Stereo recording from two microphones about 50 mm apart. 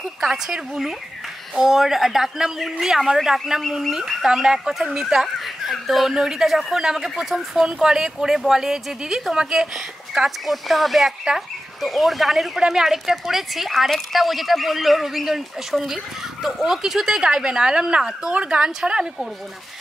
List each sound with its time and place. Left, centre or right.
0.2 s speech: centre
10.1 s a woman's voice: centre